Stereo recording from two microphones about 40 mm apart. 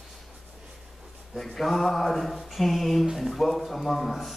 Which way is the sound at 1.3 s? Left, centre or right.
Centre.